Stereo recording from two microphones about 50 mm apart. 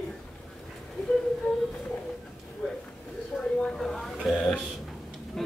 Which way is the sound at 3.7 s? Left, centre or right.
Centre.